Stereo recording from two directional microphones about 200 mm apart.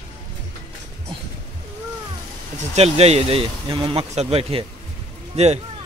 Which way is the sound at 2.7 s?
30° right (ahead or behind).